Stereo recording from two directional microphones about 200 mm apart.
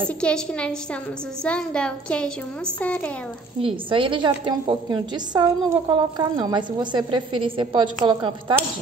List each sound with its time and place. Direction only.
0.2 s a woman's voice: 5° left (ahead or behind)
3.6 s a woman's voice: 25° right (ahead or behind)